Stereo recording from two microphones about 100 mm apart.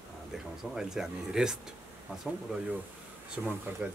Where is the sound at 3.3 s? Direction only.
15° right (ahead or behind).